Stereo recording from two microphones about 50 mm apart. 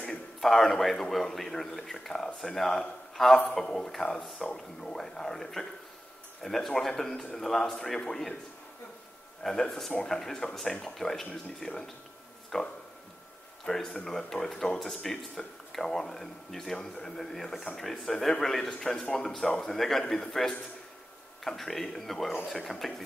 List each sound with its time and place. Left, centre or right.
0.4 s speech: centre
9.4 s speech: centre
14.5 s speech: centre
14.8 s speech: centre
21.5 s speech: centre